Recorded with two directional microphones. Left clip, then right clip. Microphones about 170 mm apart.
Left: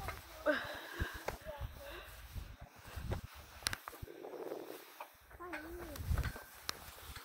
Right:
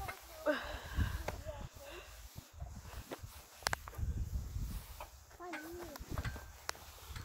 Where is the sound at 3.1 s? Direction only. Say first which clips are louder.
Left 1 dB; 50° left (ahead or behind).